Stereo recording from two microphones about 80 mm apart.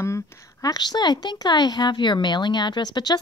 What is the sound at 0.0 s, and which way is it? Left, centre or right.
A woman's voice, left.